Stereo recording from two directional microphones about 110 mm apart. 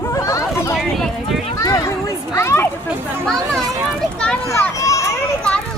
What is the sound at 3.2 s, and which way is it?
Speech, 5° left (ahead or behind).